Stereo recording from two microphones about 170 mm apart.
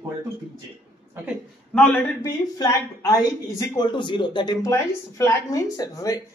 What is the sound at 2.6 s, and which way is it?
A woman's voice, 20° left (ahead or behind).